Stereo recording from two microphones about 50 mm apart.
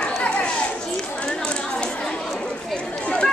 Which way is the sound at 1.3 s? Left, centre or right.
Centre.